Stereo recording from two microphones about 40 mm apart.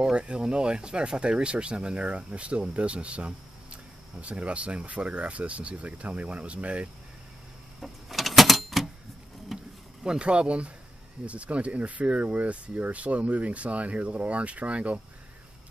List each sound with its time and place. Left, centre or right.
0.0 s speech: right
7.8 s a sound: centre
9.5 s vehicle: centre
10.0 s speech: right